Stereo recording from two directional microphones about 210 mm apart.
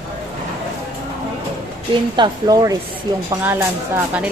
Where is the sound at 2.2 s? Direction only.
20° right (ahead or behind).